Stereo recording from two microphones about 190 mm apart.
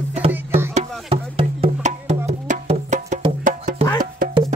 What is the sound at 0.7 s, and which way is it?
Music, 30° right (ahead or behind).